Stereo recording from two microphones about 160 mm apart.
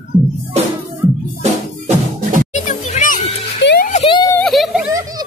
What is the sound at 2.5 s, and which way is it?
Music, 50° left (ahead or behind).